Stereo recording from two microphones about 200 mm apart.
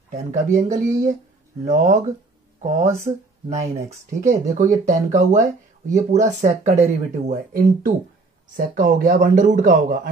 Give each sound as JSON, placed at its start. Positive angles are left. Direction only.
{"t": 0.1, "sound": "speech", "side_deg": -35}
{"t": 4.2, "sound": "speech", "side_deg": -35}